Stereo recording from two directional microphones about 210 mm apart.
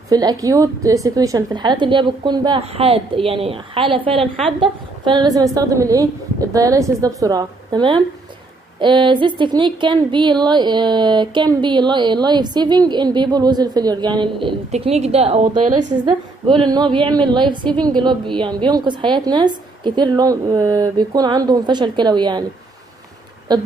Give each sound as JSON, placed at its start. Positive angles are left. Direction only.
{"t": 0.1, "sound": "a woman's voice", "side_deg": -20}
{"t": 23.5, "sound": "a woman's voice", "side_deg": -20}